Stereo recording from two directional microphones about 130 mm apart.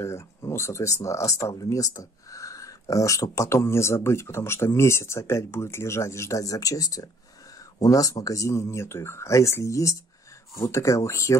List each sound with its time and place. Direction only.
0.0 s speech: 20° left (ahead or behind)